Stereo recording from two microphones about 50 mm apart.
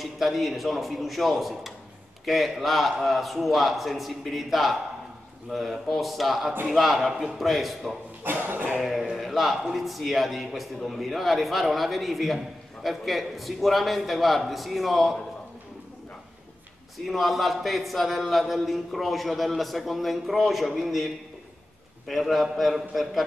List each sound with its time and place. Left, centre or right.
0.0 s speech: centre
8.2 s a sound: right
8.7 s speech: centre
17.0 s speech: centre